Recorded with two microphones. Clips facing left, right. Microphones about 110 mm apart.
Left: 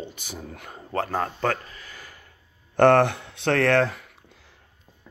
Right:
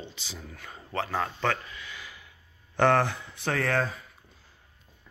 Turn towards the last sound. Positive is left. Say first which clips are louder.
# left 7 dB
turn(degrees=75)  # may be behind; listen again after turning